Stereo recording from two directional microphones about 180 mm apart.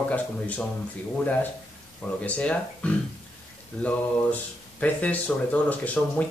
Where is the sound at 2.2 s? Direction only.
5° left (ahead or behind).